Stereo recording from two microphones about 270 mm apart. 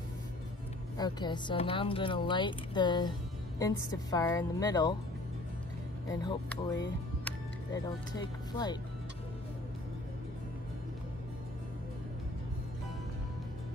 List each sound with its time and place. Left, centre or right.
0.9 s speech: centre
6.0 s speech: centre
7.2 s music: centre